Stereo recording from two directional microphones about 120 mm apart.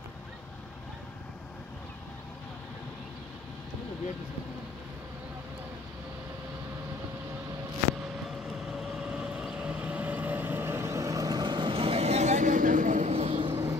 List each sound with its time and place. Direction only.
8.5 s vehicle: 5° right (ahead or behind); by 13.1 s 90° right
13.1 s vehicle: 55° right (ahead or behind)